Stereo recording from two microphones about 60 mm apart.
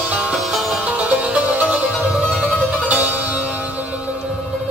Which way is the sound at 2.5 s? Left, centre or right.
Centre.